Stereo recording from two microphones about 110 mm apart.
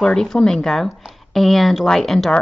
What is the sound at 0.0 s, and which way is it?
A woman's voice, 5° left (ahead or behind).